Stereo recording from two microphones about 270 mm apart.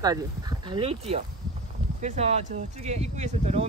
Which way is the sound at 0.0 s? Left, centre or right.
Centre.